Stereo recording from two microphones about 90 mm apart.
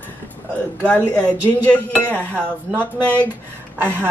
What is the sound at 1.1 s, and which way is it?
Speech, 15° left (ahead or behind).